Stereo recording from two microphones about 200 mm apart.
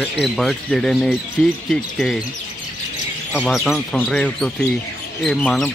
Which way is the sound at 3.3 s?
Centre (ahead or behind).